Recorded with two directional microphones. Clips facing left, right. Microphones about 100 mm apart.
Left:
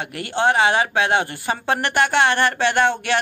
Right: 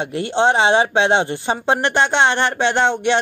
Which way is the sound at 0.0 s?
25° right (ahead or behind).